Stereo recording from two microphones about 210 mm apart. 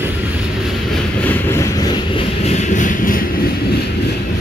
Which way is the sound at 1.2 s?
10° left (ahead or behind).